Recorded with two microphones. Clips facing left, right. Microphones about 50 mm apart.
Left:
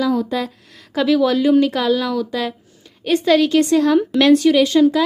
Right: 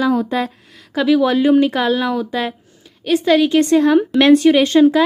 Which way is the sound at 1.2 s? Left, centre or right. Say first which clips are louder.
Even; right.